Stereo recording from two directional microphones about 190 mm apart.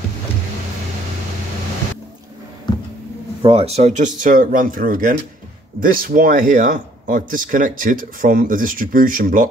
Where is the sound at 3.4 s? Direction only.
30° right (ahead or behind).